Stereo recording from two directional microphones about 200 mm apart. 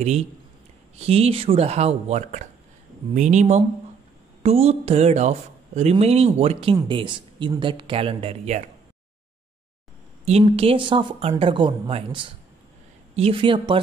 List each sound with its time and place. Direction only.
0.9 s speech: 30° right (ahead or behind)
10.2 s speech: 30° right (ahead or behind)